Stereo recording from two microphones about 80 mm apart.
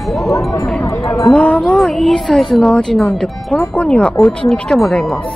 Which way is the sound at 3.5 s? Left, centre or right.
Centre.